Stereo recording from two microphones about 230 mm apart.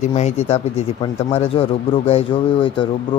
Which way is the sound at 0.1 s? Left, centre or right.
Left.